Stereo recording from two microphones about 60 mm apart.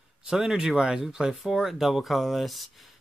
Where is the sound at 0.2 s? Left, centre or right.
Centre.